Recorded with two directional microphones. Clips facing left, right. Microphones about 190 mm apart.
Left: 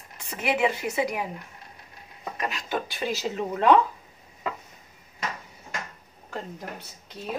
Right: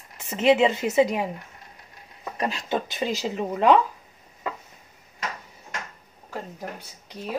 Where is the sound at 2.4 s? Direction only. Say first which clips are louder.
Right 4 dB; 30° right (ahead or behind).